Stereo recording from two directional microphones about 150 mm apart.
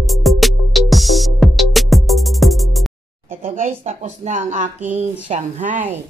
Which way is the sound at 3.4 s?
50° right (ahead or behind).